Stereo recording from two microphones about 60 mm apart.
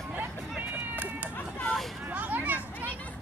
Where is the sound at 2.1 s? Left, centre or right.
Right.